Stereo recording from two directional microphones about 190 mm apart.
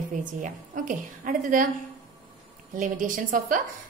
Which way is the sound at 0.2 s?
40° right (ahead or behind).